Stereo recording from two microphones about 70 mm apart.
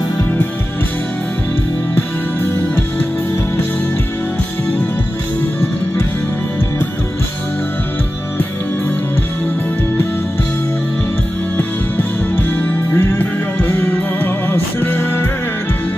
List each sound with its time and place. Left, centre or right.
11.5 s music: left